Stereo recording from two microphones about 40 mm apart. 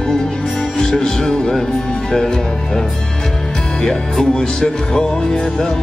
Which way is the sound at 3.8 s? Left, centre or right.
Centre.